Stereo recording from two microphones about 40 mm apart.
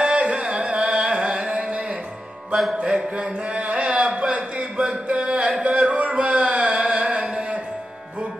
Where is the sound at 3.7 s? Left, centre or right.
Right.